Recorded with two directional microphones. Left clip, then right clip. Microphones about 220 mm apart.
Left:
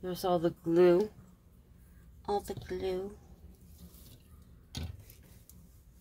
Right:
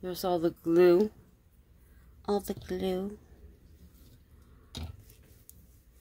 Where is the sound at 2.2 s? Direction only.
45° right (ahead or behind).